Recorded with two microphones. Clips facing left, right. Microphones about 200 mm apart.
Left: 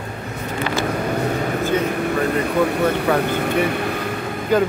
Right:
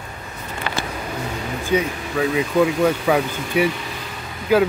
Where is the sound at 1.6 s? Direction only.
60° left (ahead or behind).